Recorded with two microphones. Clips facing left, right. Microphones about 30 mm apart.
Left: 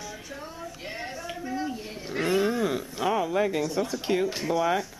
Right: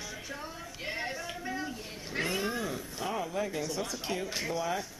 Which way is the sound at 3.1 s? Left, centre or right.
Left.